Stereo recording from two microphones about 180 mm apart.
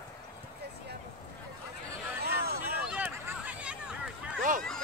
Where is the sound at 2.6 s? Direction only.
5° right (ahead or behind).